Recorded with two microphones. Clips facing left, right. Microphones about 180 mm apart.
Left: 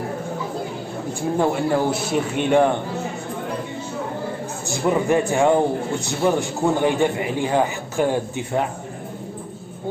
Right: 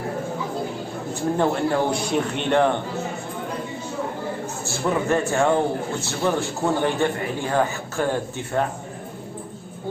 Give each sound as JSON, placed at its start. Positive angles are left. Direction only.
{"t": 1.4, "sound": "a man's voice", "side_deg": 5}
{"t": 4.6, "sound": "a man's voice", "side_deg": 15}